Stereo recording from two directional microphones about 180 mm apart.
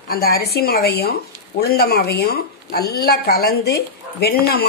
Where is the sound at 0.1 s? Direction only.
60° left (ahead or behind).